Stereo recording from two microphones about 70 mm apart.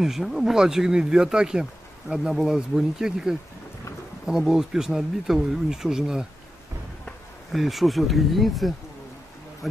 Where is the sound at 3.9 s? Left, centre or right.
Left.